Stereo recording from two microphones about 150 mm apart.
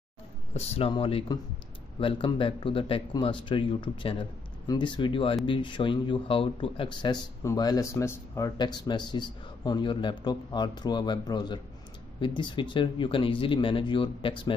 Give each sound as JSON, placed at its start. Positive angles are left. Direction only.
{"t": 0.6, "sound": "speech", "side_deg": 40}